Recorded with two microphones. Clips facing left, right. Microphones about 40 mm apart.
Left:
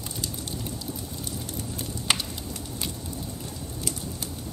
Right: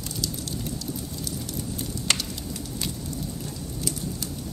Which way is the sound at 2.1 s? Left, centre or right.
Centre.